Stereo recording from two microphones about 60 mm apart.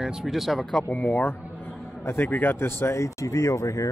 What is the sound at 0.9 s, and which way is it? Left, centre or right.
Speech, left.